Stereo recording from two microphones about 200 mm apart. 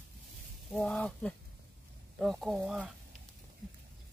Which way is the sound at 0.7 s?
5° left (ahead or behind).